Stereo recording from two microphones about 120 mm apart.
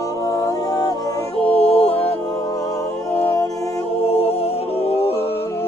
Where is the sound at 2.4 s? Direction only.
30° left (ahead or behind).